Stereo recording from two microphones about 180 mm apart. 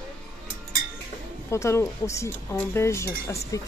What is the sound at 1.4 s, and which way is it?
Speech, 15° left (ahead or behind).